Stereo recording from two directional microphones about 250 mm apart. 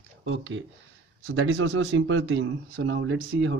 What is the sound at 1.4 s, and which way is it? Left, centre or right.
Speech, right.